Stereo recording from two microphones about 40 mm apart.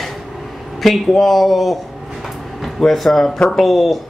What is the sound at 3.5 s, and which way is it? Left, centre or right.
Speech, centre.